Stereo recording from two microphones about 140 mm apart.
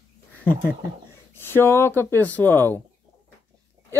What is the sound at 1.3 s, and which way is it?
Speech, 15° left (ahead or behind).